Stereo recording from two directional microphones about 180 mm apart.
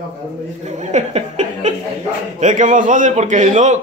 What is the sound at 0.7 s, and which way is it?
A man's voice, 40° right (ahead or behind).